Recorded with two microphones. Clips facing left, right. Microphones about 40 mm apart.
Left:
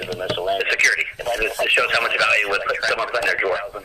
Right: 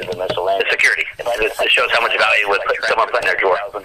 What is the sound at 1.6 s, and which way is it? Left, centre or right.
Speech, right.